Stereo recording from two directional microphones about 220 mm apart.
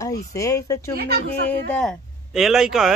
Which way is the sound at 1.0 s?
45° right (ahead or behind).